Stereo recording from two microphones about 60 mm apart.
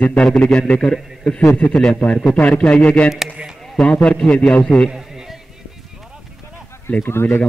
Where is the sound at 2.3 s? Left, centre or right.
Left.